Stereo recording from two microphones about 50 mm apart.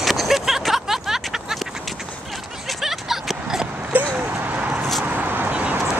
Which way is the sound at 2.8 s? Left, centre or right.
Centre.